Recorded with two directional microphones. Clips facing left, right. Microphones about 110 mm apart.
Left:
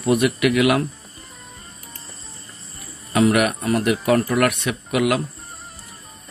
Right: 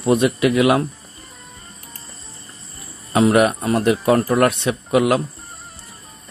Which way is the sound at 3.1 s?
25° right (ahead or behind).